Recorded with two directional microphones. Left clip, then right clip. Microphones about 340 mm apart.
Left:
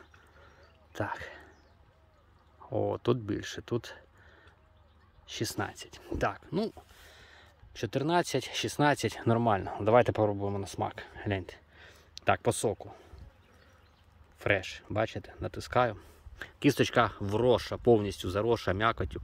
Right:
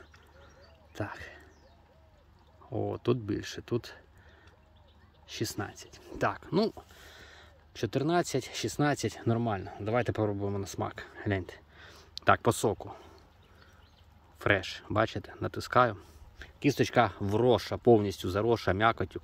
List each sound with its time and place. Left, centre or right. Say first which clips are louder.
0.9 s a sound: left 4 dB; centre
2.7 s speech: left 2 dB; centre
5.2 s speech: left 2 dB; centre
14.4 s speech: right 1 dB; centre
16.3 s speech: left 2 dB; centre